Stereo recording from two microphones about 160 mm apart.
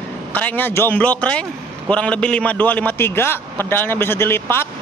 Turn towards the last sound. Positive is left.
turn(degrees=15)  # may be behind; listen again after turning